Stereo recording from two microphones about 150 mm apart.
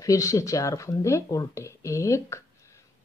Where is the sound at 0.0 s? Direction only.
20° left (ahead or behind).